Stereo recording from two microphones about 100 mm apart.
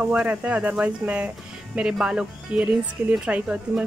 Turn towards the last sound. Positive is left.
turn(degrees=-10)  # may be behind; listen again after turning